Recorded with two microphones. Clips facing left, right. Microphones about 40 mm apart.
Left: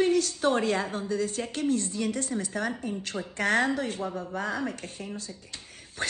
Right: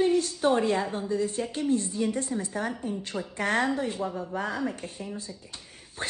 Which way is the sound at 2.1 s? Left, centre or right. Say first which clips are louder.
Right 1 dB; right.